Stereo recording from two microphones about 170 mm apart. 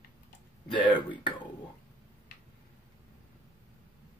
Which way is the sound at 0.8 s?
25° left (ahead or behind).